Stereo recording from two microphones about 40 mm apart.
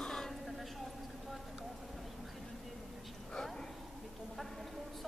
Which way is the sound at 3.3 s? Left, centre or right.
Centre.